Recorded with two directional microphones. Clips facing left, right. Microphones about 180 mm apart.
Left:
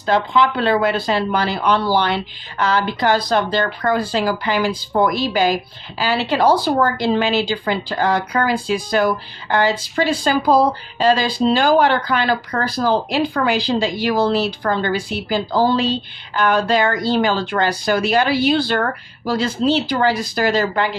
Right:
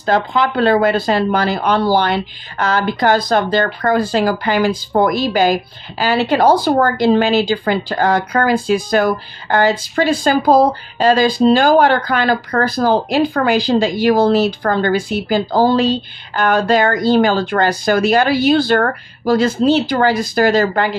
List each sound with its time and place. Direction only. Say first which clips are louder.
0.0 s speech: right 1 dB; 45° right (ahead or behind)